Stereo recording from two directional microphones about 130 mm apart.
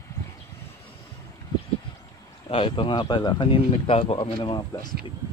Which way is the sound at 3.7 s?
50° left (ahead or behind).